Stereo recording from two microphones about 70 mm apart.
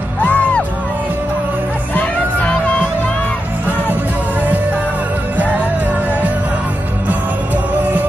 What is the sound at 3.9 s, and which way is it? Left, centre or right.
Music, right.